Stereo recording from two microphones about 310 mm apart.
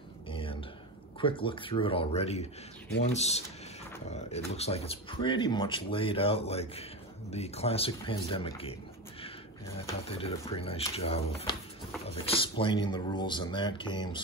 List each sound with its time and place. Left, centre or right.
0.3 s a sound: centre
1.2 s speech: centre
9.8 s speech: centre